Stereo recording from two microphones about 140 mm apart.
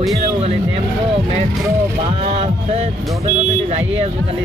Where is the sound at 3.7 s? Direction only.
50° right (ahead or behind).